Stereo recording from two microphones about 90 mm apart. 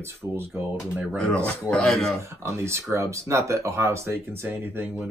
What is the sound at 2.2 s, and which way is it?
Speech, 30° right (ahead or behind).